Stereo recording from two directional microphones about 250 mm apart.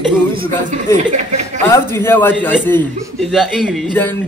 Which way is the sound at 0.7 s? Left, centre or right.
Right.